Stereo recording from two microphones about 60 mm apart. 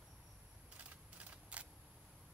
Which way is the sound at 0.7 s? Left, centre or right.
Right.